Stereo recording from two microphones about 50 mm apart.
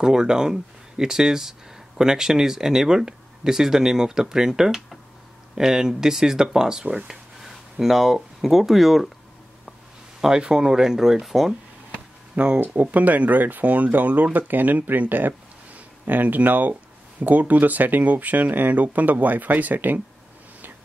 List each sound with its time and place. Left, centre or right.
0.0 s speech: centre
10.2 s speech: centre
12.5 s speech: right